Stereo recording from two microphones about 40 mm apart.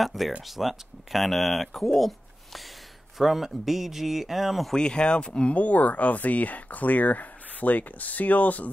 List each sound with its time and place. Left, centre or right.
0.0 s speech: centre
4.7 s speech: left
5.5 s speech: left